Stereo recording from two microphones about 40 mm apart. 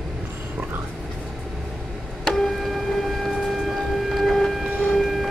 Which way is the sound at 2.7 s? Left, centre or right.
Centre.